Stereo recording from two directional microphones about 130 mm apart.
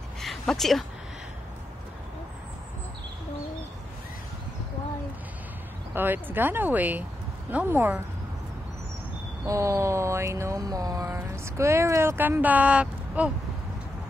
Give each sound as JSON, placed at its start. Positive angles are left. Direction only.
{"t": 0.2, "sound": "a sound", "side_deg": 0}
{"t": 5.9, "sound": "speech", "side_deg": -15}
{"t": 9.4, "sound": "speech", "side_deg": -25}